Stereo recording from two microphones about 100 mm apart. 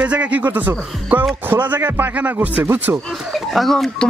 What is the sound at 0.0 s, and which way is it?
Speech, 10° right (ahead or behind).